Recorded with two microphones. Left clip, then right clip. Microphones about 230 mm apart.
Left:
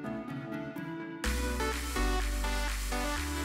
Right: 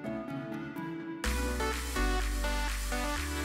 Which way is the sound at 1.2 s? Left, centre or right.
Centre.